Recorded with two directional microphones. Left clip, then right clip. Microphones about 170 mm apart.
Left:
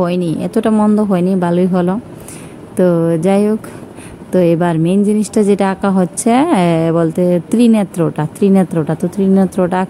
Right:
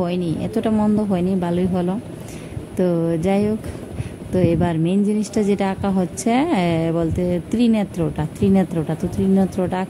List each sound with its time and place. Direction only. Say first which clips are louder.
0.0 s a woman's voice: left 7 dB; 25° left (ahead or behind)